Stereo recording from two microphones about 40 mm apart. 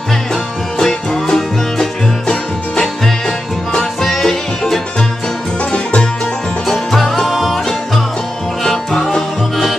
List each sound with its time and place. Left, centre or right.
0.3 s music: centre
5.6 s music: left
6.9 s music: centre
8.6 s music: centre